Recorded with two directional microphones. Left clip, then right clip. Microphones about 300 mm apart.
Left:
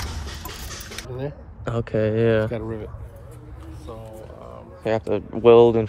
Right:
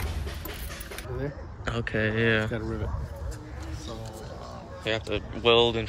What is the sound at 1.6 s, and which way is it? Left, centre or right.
Speech, centre.